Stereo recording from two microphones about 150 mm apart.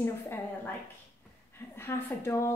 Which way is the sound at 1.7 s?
15° left (ahead or behind).